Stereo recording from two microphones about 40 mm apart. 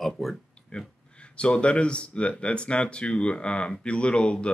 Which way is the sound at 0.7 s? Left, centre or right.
Left.